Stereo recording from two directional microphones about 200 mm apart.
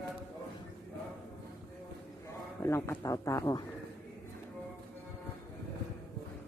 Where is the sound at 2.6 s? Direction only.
15° left (ahead or behind).